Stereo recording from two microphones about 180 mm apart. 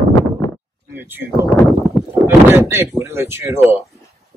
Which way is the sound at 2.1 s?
15° right (ahead or behind).